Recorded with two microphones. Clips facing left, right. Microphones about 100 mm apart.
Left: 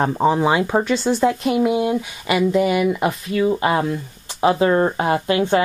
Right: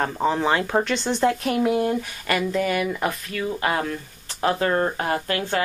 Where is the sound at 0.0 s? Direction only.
15° left (ahead or behind).